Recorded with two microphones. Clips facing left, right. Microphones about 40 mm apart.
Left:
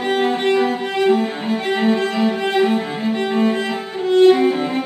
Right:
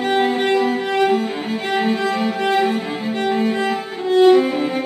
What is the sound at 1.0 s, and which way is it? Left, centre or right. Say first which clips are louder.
Music: left 5 dB; centre.